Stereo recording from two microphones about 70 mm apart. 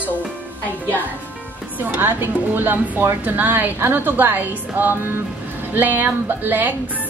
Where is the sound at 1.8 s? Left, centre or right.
Right.